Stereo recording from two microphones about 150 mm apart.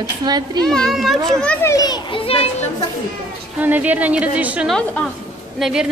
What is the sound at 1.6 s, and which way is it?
Speech, 25° left (ahead or behind).